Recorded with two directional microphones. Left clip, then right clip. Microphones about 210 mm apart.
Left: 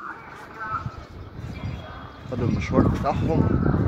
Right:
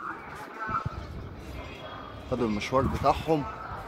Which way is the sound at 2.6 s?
20° right (ahead or behind).